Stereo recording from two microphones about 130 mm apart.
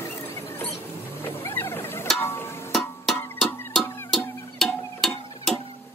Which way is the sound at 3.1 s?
15° left (ahead or behind).